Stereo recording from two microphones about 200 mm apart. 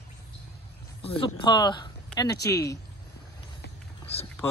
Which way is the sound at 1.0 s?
30° left (ahead or behind).